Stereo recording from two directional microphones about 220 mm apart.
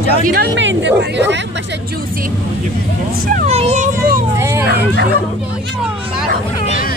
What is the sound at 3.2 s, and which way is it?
Speech, 35° right (ahead or behind).